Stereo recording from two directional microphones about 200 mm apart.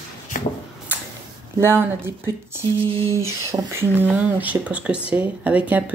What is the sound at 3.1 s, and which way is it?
Speech, 15° right (ahead or behind).